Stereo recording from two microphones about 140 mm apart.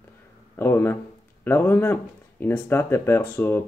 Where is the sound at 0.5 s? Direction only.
15° left (ahead or behind).